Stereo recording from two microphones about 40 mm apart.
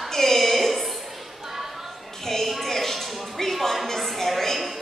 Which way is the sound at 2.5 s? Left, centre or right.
Centre.